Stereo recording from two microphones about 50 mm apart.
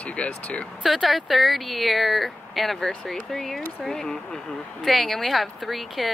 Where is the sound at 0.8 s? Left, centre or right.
Centre.